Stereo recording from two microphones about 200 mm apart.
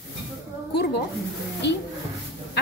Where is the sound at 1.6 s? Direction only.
60° left (ahead or behind).